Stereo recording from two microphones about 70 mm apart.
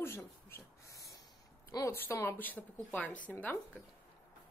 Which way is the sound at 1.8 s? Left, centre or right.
Left.